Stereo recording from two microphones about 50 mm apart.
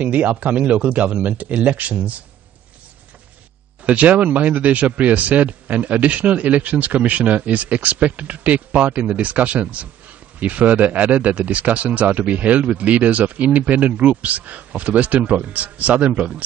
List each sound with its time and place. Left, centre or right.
0.0 s speech: right
3.8 s speech: right